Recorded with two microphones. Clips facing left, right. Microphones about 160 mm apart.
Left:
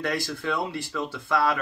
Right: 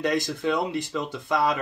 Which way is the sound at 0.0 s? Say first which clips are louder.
Right 4 dB; 20° right (ahead or behind).